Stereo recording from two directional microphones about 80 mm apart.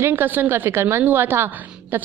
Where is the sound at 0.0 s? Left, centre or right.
Right.